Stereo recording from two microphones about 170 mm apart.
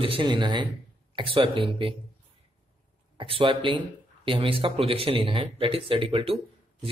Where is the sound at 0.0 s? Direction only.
30° right (ahead or behind).